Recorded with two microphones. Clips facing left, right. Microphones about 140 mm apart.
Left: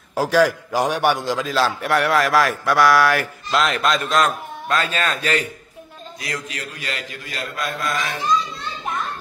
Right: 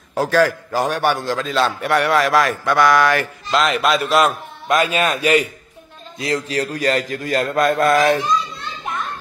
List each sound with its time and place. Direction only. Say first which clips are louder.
0.1 s a man's voice: right 1 dB; 10° left (ahead or behind)
1.5 s a man's voice: right 2 dB; centre (ahead or behind)
6.1 s a man's voice: right 10 dB; 25° right (ahead or behind); by 8.2 s 50° right (ahead or behind)
8.2 s a child's voice: right 1 dB; centre (ahead or behind)